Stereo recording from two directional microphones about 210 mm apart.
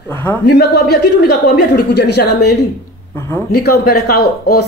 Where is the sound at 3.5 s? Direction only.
90° left.